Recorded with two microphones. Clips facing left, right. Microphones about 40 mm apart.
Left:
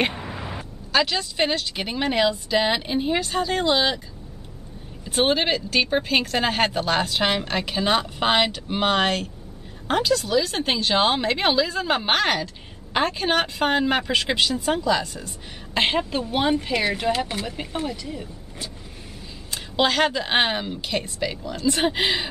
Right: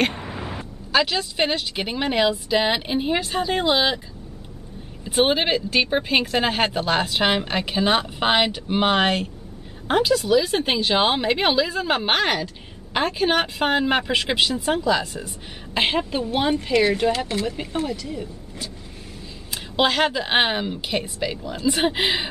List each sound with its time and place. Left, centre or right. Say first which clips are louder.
0.0 s speech: right 1 dB; centre
5.0 s speech: right 1 dB; centre
19.5 s speech: right 1 dB; centre